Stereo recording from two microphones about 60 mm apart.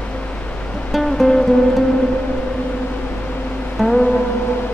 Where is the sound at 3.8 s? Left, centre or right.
Centre.